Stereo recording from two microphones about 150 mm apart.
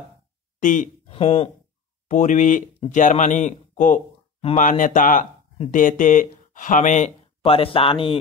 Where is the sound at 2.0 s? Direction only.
55° left (ahead or behind).